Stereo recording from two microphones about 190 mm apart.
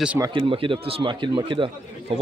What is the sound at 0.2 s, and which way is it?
Speech, 25° right (ahead or behind).